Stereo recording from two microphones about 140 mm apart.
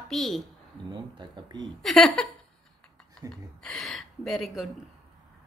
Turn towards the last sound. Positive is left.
turn(degrees=0)  # may be behind; listen again after turning